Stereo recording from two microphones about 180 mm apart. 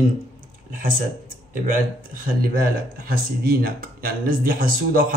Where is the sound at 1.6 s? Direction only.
50° right (ahead or behind).